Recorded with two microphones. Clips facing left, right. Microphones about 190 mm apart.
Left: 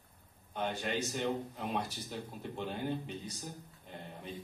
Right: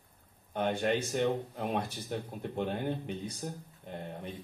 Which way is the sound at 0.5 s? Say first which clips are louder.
Right 6 dB; 55° right (ahead or behind).